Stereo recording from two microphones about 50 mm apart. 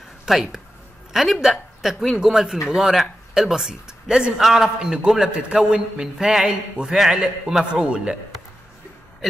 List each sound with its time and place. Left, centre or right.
0.2 s a man's voice: centre